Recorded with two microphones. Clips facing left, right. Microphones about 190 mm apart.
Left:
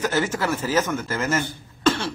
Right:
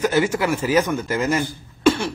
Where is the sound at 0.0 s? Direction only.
10° right (ahead or behind).